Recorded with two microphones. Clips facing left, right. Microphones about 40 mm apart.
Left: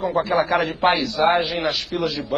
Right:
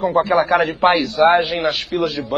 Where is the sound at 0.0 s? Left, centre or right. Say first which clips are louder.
Right 4 dB; right.